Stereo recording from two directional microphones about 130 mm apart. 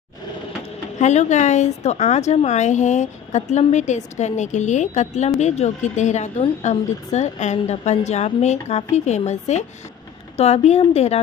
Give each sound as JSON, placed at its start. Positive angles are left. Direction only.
{"t": 0.9, "sound": "a woman's voice", "side_deg": 60}